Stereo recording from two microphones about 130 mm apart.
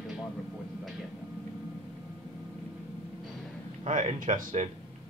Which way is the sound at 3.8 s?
65° right (ahead or behind).